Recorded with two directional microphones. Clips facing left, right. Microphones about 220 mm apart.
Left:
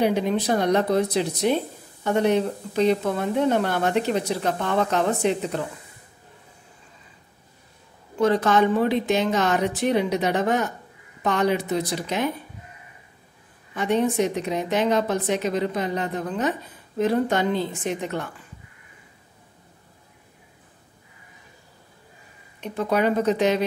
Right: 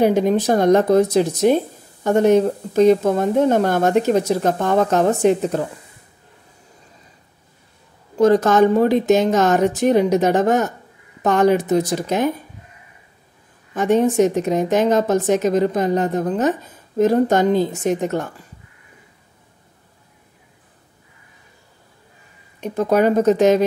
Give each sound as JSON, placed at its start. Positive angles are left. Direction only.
{"t": 0.0, "sound": "speech", "side_deg": -45}
{"t": 8.2, "sound": "speech", "side_deg": -45}
{"t": 13.7, "sound": "speech", "side_deg": -45}
{"t": 22.6, "sound": "speech", "side_deg": -45}